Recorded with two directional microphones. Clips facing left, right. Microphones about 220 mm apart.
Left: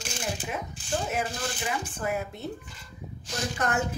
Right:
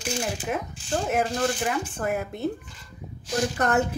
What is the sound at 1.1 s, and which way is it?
Speech, 55° right (ahead or behind).